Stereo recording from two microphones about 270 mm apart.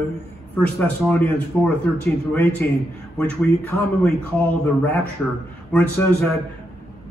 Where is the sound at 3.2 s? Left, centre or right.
Centre.